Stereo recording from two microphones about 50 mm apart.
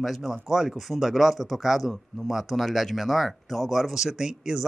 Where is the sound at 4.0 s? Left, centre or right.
Centre.